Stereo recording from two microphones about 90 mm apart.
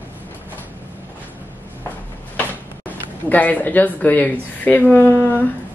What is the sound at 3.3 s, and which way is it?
A woman's voice, 20° left (ahead or behind).